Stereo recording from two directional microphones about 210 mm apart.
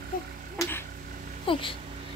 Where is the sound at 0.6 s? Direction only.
10° left (ahead or behind).